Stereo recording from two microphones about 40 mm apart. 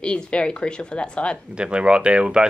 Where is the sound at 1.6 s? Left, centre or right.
Right.